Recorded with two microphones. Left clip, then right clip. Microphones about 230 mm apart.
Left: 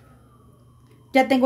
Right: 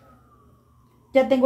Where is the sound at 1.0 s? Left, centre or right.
Left.